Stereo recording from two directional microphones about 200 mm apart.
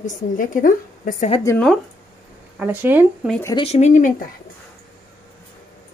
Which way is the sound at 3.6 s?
35° left (ahead or behind).